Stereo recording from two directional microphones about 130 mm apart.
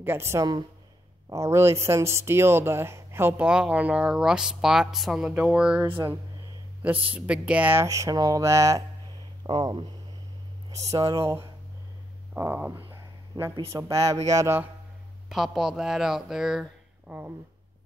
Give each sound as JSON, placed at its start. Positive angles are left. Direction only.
{"t": 0.0, "sound": "speech", "side_deg": -15}
{"t": 7.2, "sound": "speech", "side_deg": -10}
{"t": 9.5, "sound": "speech", "side_deg": -40}
{"t": 10.7, "sound": "speech", "side_deg": -25}
{"t": 12.4, "sound": "speech", "side_deg": -15}
{"t": 13.4, "sound": "speech", "side_deg": -25}
{"t": 15.2, "sound": "speech", "side_deg": 0}
{"t": 17.1, "sound": "a sound", "side_deg": -15}